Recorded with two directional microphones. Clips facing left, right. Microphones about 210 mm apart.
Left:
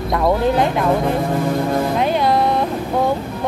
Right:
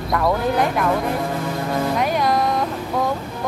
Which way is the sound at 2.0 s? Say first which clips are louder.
Left 3 dB; 25° left (ahead or behind).